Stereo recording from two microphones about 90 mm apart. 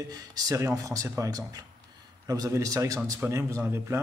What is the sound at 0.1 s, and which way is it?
Speech, 45° right (ahead or behind).